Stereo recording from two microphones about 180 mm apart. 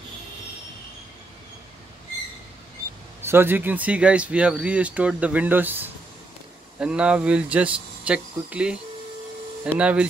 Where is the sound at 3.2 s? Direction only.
10° right (ahead or behind).